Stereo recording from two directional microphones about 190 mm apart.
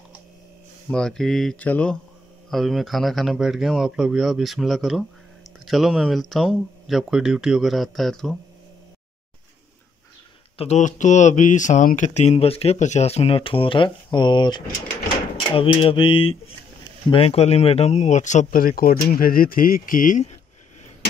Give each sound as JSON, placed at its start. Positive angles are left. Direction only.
{"t": 0.8, "sound": "speech", "side_deg": 5}
{"t": 10.6, "sound": "speech", "side_deg": 40}
{"t": 15.5, "sound": "a sound", "side_deg": 30}
{"t": 16.8, "sound": "speech", "side_deg": 30}